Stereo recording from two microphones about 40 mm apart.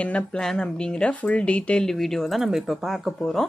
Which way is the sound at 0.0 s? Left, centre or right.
Left.